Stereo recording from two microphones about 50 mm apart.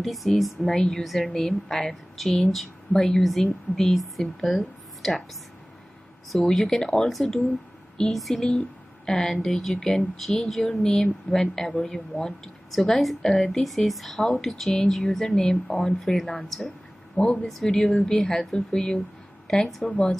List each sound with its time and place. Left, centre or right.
0.0 s a woman's voice: centre
6.3 s a woman's voice: centre
9.8 s a woman's voice: centre
10.1 s a woman's voice: centre
12.7 s a woman's voice: centre
16.0 s a woman's voice: centre
17.2 s speech: centre
18.1 s a woman's voice: centre
19.4 s a sound: centre